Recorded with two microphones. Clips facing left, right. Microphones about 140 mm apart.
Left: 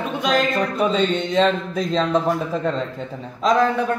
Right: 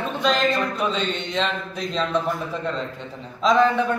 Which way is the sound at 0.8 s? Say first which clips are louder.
Left 6 dB; 45° left (ahead or behind).